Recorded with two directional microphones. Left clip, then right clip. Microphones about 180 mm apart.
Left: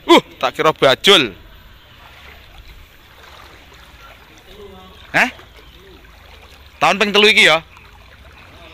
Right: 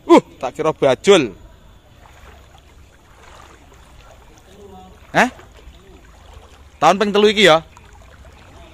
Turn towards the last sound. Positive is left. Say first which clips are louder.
# left 1 dB
turn(degrees=-30)  # may be behind; listen again after turning